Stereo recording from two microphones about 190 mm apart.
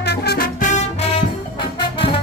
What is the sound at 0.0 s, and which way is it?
Music, 60° left (ahead or behind).